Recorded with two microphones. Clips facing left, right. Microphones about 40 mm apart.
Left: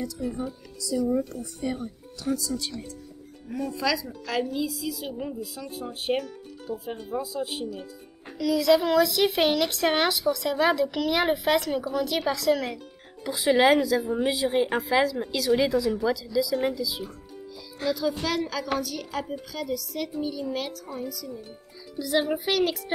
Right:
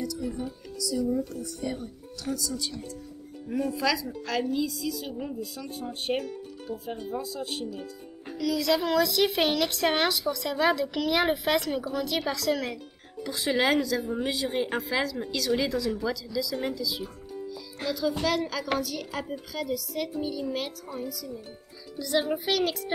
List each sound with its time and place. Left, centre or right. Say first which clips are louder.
0.2 s speech: left 2 dB; centre
1.0 s speech: left 4 dB; left
1.8 s a woman's voice: left 2 dB; centre
3.5 s a woman's voice: even; centre